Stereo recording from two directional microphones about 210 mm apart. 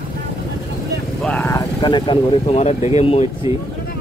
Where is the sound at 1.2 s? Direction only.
5° left (ahead or behind); by 3.2 s 30° left (ahead or behind).